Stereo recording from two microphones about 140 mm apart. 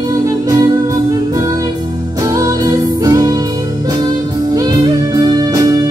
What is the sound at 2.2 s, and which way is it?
Music, 25° right (ahead or behind).